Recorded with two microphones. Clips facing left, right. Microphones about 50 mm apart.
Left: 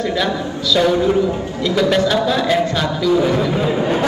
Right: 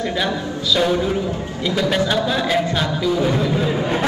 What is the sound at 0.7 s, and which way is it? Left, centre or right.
A man's voice, centre.